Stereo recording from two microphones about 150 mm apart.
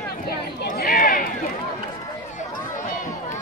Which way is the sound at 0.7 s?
80° left.